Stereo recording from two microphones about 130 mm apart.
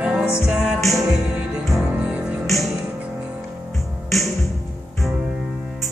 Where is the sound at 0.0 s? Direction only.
5° right (ahead or behind).